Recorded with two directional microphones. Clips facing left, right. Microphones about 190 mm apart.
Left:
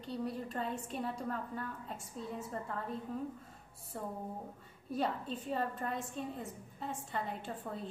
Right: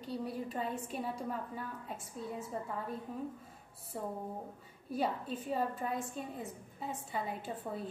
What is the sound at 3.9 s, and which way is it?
A woman's voice, 10° right (ahead or behind).